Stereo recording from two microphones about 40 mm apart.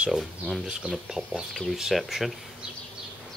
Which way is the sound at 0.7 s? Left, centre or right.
Centre.